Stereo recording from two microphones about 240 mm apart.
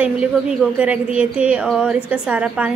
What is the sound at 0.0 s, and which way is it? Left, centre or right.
A woman's voice, centre.